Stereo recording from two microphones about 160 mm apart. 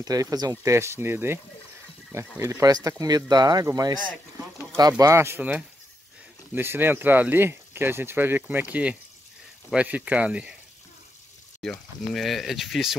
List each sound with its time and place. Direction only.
0.0 s speech: 20° right (ahead or behind)
11.6 s speech: centre (ahead or behind)